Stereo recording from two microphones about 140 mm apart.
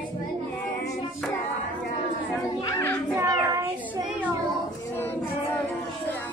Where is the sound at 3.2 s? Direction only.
20° right (ahead or behind).